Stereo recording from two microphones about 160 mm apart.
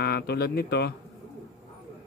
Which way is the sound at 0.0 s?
75° left (ahead or behind).